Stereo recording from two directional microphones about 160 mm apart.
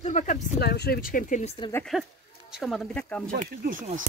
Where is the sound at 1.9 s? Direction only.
Centre (ahead or behind).